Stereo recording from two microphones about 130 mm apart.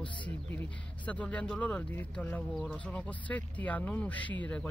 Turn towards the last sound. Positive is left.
turn(degrees=10)  # may be behind; listen again after turning